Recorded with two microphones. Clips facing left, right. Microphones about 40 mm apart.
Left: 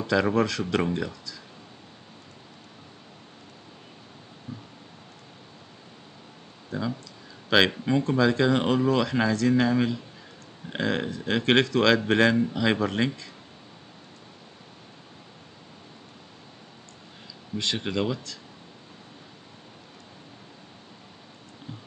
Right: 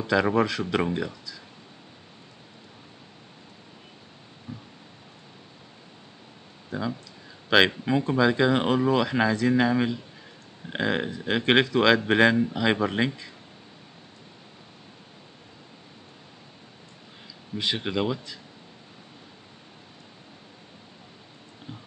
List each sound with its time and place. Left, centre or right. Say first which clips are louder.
0.0 s speech: right 1 dB; centre
4.5 s a sound: even; right
6.7 s speech: even; centre
17.6 s speech: right 1 dB; centre